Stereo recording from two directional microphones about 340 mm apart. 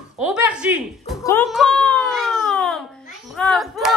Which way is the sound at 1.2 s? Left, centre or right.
Centre.